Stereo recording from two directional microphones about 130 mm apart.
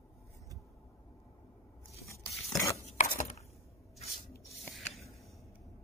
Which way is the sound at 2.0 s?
20° left (ahead or behind).